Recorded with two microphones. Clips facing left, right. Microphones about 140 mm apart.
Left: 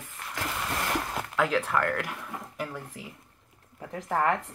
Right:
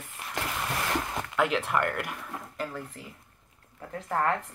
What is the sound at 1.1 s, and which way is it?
Speech, centre (ahead or behind).